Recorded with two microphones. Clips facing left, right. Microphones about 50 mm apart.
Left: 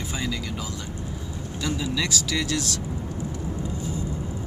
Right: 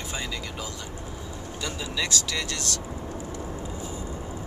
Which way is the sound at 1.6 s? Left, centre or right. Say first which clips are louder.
Left 4 dB; centre.